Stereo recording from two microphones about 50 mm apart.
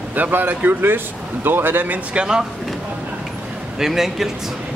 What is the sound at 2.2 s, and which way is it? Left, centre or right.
Speech, centre.